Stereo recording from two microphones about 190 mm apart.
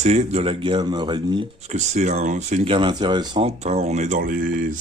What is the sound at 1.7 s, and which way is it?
Speech, 40° right (ahead or behind).